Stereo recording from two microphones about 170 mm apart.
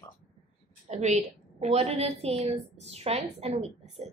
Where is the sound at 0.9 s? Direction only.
40° right (ahead or behind).